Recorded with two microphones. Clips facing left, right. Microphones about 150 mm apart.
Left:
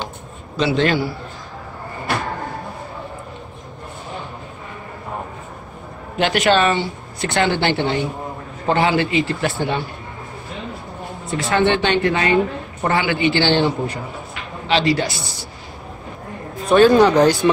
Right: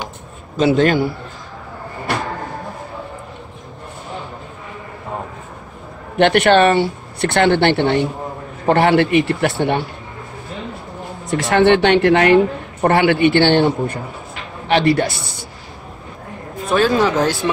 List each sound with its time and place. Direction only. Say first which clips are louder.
0.6 s a man's voice: right 4 dB; 45° right (ahead or behind)
6.1 s speech: right 4 dB; 60° right (ahead or behind)
11.2 s speech: right 5 dB; 70° right (ahead or behind)
16.6 s speech: left 4 dB; centre (ahead or behind)